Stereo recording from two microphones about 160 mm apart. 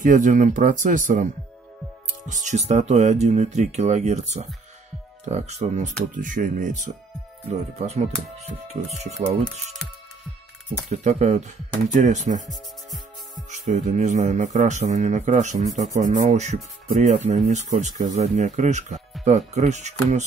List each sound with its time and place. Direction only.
0.0 s speech: 55° right (ahead or behind)
2.2 s speech: 50° right (ahead or behind)
7.8 s speech: 45° right (ahead or behind)
10.9 s speech: 45° right (ahead or behind)
13.5 s speech: 45° right (ahead or behind)